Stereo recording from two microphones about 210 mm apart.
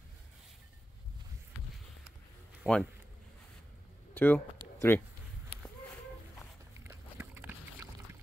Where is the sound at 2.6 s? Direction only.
5° left (ahead or behind).